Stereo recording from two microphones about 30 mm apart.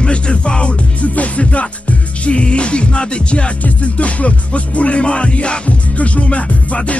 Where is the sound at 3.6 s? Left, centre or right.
Left.